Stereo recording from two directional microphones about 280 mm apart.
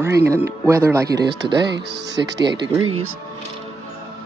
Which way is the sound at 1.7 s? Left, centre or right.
Right.